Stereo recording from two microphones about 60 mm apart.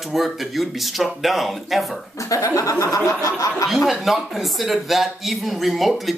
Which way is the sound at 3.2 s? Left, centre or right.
Left.